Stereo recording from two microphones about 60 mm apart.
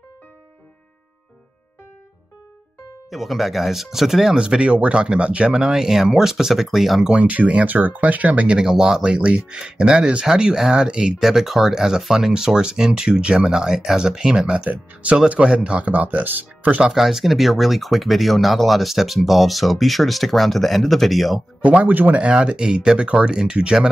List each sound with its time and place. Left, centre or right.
3.1 s speech: centre
7.1 s speech: right
8.5 s speech: centre; by 16.8 s right
16.8 s speech: centre
21.5 s speech: centre
21.8 s speech: right
22.2 s speech: centre